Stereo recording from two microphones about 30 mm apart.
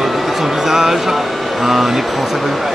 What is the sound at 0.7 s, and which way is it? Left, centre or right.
Music, centre.